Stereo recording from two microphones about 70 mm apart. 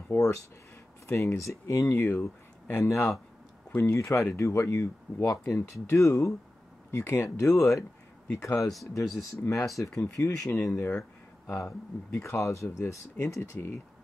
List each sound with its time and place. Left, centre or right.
0.2 s speech: left
9.0 s speech: centre
9.8 s speech: left
12.1 s speech: left